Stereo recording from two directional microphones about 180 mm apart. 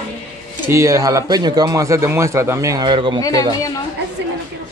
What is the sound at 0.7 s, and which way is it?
Speech, 15° right (ahead or behind).